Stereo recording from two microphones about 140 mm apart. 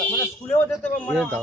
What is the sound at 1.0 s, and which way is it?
Speech, centre (ahead or behind).